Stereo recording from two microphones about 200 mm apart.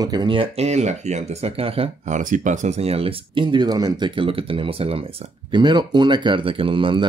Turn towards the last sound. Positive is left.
turn(degrees=-25)  # may be behind; listen again after turning